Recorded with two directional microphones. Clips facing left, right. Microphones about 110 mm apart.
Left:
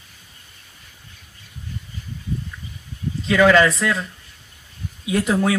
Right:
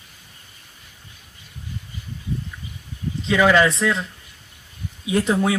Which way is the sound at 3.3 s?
10° right (ahead or behind).